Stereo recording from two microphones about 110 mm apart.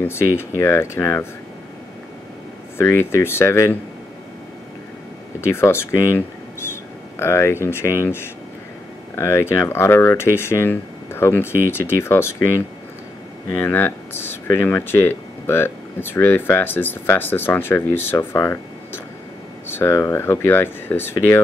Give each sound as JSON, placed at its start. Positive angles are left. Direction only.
{"t": 0.0, "sound": "speech", "side_deg": 20}
{"t": 2.8, "sound": "speech", "side_deg": 25}
{"t": 5.5, "sound": "speech", "side_deg": 25}
{"t": 13.7, "sound": "speech", "side_deg": 20}
{"t": 19.7, "sound": "speech", "side_deg": 25}